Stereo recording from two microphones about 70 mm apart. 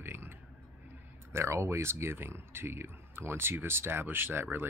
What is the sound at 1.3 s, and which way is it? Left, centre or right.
Speech, right.